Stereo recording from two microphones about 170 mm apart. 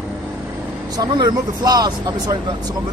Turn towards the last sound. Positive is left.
turn(degrees=-25)  # may be behind; listen again after turning